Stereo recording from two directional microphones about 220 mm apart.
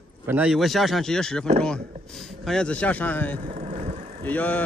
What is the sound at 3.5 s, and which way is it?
Vehicle, 35° right (ahead or behind).